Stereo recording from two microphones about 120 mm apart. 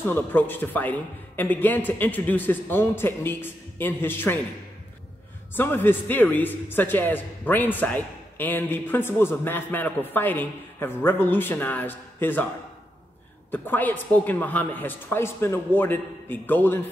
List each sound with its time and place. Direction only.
0.0 s a man's voice: 15° left (ahead or behind)
5.5 s a man's voice: 15° left (ahead or behind)
13.5 s a man's voice: 15° left (ahead or behind)